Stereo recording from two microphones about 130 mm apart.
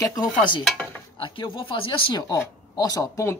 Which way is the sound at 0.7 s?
5° left (ahead or behind).